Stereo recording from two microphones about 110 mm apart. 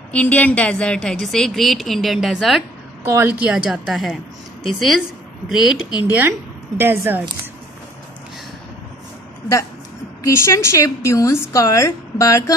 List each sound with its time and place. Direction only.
0.1 s a woman's voice: 15° left (ahead or behind)
3.1 s a woman's voice: 15° right (ahead or behind)
5.9 s speech: 40° left (ahead or behind)
6.8 s a woman's voice: 20° right (ahead or behind)
10.2 s a woman's voice: 25° left (ahead or behind)